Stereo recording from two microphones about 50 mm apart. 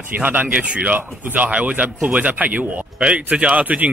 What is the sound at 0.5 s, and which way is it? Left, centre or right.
Speech, right.